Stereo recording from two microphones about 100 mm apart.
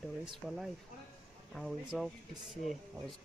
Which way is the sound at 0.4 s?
Centre (ahead or behind).